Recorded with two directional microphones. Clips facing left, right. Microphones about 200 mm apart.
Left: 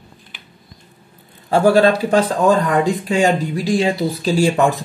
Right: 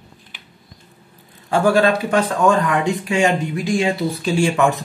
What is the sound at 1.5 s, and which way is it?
Speech, 35° left (ahead or behind).